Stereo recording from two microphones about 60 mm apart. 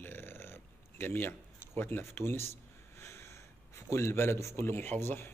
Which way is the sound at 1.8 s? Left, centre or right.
Left.